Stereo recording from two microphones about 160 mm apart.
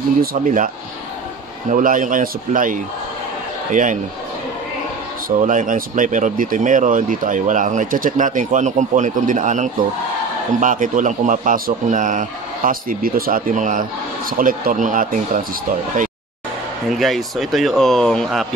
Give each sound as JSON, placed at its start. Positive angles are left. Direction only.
{"t": 0.2, "sound": "a man's voice", "side_deg": -60}
{"t": 1.7, "sound": "a man's voice", "side_deg": -55}
{"t": 5.4, "sound": "a man's voice", "side_deg": -55}
{"t": 16.9, "sound": "speech", "side_deg": 0}